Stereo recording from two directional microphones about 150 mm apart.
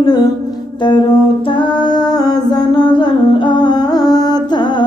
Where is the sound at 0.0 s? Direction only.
25° left (ahead or behind).